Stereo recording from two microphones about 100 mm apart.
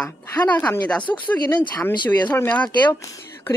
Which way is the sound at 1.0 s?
50° left (ahead or behind).